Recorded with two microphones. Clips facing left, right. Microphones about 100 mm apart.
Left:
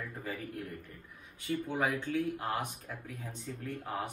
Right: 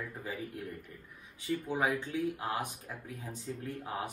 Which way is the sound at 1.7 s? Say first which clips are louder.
Even; 15° right (ahead or behind).